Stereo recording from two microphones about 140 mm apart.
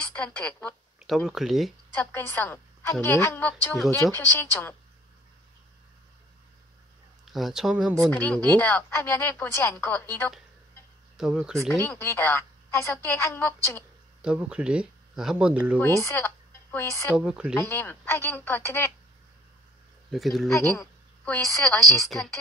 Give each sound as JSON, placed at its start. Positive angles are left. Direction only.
{"t": 0.0, "sound": "a woman's voice", "side_deg": 10}
{"t": 0.9, "sound": "speech", "side_deg": 0}
{"t": 2.0, "sound": "a woman's voice", "side_deg": 15}
{"t": 7.2, "sound": "a woman's voice", "side_deg": 0}
{"t": 8.1, "sound": "a woman's voice", "side_deg": 10}
{"t": 11.1, "sound": "a woman's voice", "side_deg": -5}
{"t": 11.7, "sound": "a woman's voice", "side_deg": 20}
{"t": 14.2, "sound": "speech", "side_deg": -5}
{"t": 15.8, "sound": "speech", "side_deg": 20}
{"t": 17.2, "sound": "speech", "side_deg": -5}
{"t": 17.6, "sound": "a woman's voice", "side_deg": 15}
{"t": 20.1, "sound": "speech", "side_deg": 0}
{"t": 20.5, "sound": "a woman's voice", "side_deg": 20}
{"t": 21.3, "sound": "a woman's voice", "side_deg": 5}